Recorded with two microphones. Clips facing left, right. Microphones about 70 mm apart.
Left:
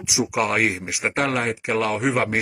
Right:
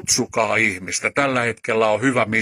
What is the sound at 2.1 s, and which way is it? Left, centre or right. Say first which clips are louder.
Speech: right 3 dB; right.